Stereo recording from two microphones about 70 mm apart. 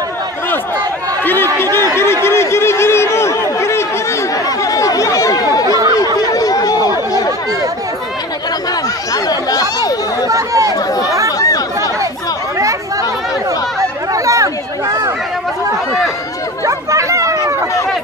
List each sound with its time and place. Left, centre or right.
1.2 s a sound: left
2.2 s chatter: left
4.5 s chatter: left
5.7 s chatter: right
6.3 s chatter: left
9.1 s chatter: left
10.2 s chatter: right
11.3 s chatter: left
14.1 s a sound: right
16.6 s chatter: right